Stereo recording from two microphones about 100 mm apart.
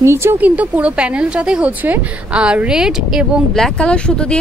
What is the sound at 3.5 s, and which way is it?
Speech, 5° left (ahead or behind).